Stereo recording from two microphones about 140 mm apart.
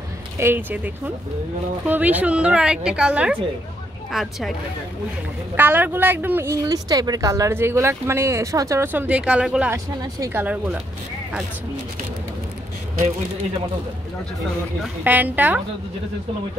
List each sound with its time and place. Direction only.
0.4 s speech: 15° right (ahead or behind)
5.6 s speech: 15° right (ahead or behind)
15.0 s speech: 10° right (ahead or behind)